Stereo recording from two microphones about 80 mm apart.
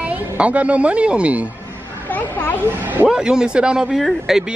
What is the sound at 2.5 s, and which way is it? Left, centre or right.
Speech, right.